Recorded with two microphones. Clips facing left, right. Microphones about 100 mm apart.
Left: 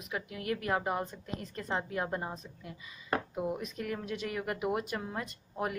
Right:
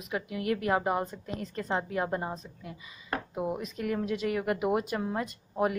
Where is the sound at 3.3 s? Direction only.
20° right (ahead or behind).